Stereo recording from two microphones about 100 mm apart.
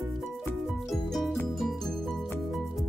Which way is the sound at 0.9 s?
Centre (ahead or behind).